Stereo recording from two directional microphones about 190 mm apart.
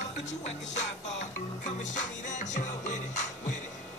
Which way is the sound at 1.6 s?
40° left (ahead or behind).